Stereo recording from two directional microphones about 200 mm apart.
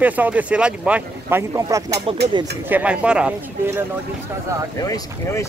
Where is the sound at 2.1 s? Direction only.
25° right (ahead or behind).